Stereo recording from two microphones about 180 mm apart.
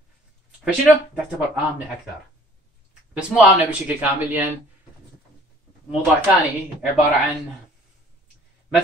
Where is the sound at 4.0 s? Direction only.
10° right (ahead or behind).